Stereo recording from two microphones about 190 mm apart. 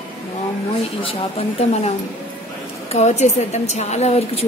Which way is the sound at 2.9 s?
35° left (ahead or behind).